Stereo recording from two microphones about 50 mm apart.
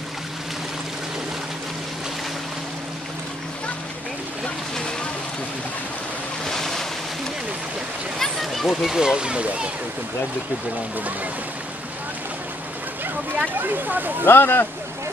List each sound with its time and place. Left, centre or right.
6.4 s boat: centre
8.2 s a sound: centre
9.0 s speech: centre
13.6 s speech: right
14.2 s speech: left